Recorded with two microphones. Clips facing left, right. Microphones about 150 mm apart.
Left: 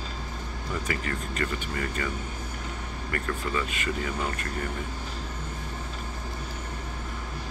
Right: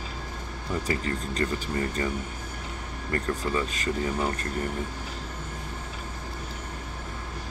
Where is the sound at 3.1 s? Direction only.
30° right (ahead or behind).